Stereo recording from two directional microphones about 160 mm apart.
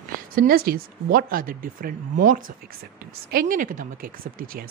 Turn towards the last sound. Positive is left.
turn(degrees=-65)  # may be behind; listen again after turning